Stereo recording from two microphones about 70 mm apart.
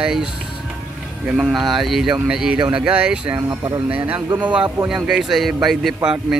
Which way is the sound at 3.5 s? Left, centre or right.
Right.